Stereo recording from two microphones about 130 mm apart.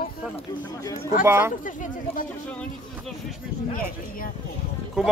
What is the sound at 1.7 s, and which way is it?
Speech, 90° left.